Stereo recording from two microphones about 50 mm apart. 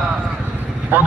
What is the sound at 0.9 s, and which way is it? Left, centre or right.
Speech, right.